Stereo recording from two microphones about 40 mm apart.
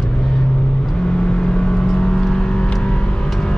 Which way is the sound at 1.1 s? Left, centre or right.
Left.